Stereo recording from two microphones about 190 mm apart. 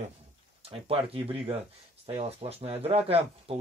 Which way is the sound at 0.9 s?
30° right (ahead or behind).